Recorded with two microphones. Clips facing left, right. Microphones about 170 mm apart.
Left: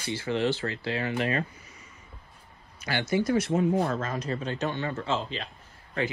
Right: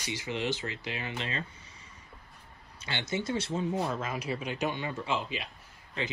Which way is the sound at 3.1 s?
25° right (ahead or behind).